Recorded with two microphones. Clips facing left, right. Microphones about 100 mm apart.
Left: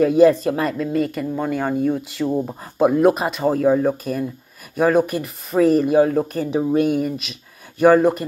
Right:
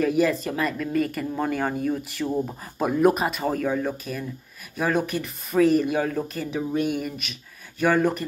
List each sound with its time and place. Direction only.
0.0 s speech: 30° left (ahead or behind)
1.2 s speech: 5° left (ahead or behind)
1.9 s speech: 25° left (ahead or behind)